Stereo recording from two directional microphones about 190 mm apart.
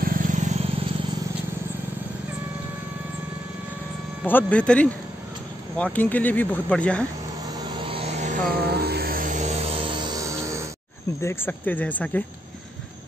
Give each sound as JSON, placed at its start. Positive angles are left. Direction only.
{"t": 0.0, "sound": "a sound", "side_deg": -45}
{"t": 4.3, "sound": "speech", "side_deg": 10}
{"t": 7.8, "sound": "vehicle", "side_deg": -30}
{"t": 8.6, "sound": "music", "side_deg": -55}
{"t": 11.1, "sound": "speech", "side_deg": 15}